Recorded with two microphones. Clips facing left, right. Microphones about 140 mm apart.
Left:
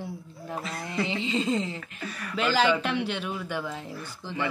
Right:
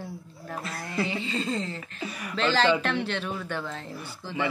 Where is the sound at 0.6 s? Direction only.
Centre (ahead or behind).